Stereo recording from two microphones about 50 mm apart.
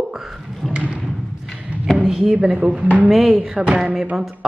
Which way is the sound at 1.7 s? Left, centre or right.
Right.